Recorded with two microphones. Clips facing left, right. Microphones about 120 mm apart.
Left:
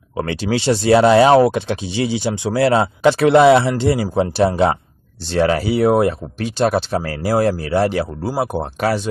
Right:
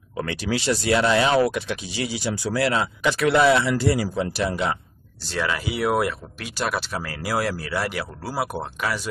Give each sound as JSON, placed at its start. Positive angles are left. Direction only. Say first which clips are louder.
{"t": 0.2, "sound": "speech", "louder": "left 6 dB", "side_deg": 30}
{"t": 1.4, "sound": "speech", "louder": "left 6 dB", "side_deg": 30}
{"t": 7.5, "sound": "speech", "louder": "left 10 dB", "side_deg": 25}